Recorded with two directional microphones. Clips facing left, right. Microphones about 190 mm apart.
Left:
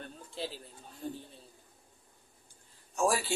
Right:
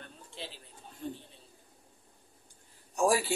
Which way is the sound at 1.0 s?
40° left (ahead or behind).